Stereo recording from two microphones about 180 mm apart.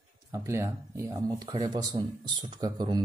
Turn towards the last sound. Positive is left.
turn(degrees=-20)  # may be behind; listen again after turning